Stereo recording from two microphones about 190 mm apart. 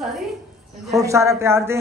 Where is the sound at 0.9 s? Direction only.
15° right (ahead or behind).